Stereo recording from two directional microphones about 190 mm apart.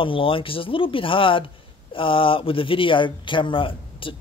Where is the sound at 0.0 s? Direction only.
30° left (ahead or behind).